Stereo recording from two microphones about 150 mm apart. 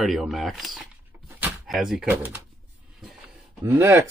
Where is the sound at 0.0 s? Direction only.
Centre (ahead or behind).